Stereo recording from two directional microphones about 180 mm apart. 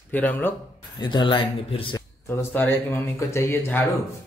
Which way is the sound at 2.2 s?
10° left (ahead or behind).